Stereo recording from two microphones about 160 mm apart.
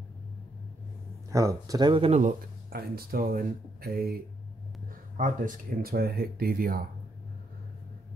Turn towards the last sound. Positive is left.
turn(degrees=-65)  # may be behind; listen again after turning